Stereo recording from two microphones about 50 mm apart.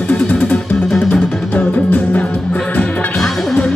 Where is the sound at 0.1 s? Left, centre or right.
Left.